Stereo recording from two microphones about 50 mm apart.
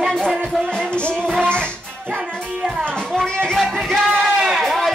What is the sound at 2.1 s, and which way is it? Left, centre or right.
Music, right.